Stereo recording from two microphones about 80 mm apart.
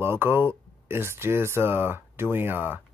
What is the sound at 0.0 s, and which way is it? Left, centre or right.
Speech, right.